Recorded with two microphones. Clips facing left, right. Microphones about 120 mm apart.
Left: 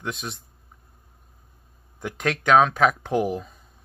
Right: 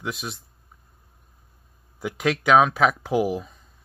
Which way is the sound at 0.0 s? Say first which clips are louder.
Even; 5° right (ahead or behind).